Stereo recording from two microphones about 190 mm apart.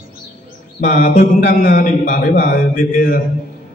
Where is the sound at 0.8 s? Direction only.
45° left (ahead or behind).